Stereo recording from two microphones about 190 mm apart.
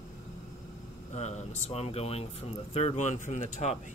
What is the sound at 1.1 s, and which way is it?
Speech, 35° left (ahead or behind).